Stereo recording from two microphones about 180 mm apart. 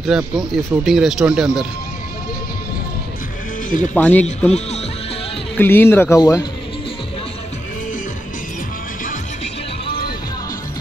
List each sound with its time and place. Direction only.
0.1 s speech: centre (ahead or behind)
3.9 s speech: 10° left (ahead or behind)
4.5 s speech: 35° left (ahead or behind)
5.6 s speech: 10° left (ahead or behind)